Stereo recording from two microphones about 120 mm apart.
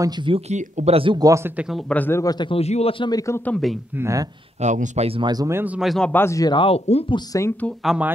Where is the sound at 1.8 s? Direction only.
15° left (ahead or behind).